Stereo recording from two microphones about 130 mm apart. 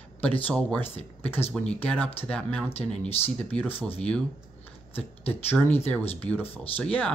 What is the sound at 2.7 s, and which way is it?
Speech, 50° left (ahead or behind).